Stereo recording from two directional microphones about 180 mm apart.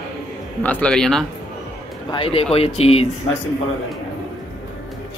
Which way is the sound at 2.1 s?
30° left (ahead or behind).